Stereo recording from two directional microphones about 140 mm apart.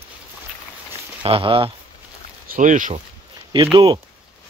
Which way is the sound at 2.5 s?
70° right (ahead or behind).